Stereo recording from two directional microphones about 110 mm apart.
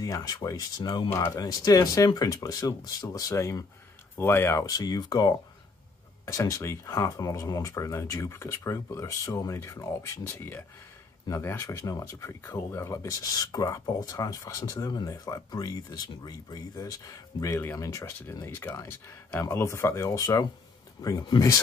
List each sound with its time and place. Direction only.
0.0 s speech: 35° left (ahead or behind)
1.1 s speech: 25° left (ahead or behind)
1.4 s speech: 35° left (ahead or behind)
4.6 s speech: 35° left (ahead or behind)
10.2 s speech: 20° left (ahead or behind); by 21.5 s 35° left (ahead or behind)